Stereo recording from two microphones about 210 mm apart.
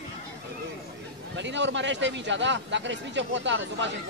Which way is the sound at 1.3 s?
60° right (ahead or behind).